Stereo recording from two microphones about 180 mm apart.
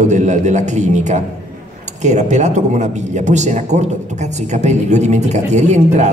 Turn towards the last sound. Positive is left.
turn(degrees=-40)  # may be behind; listen again after turning